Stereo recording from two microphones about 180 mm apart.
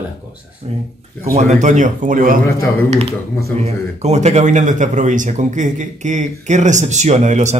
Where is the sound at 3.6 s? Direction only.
35° right (ahead or behind).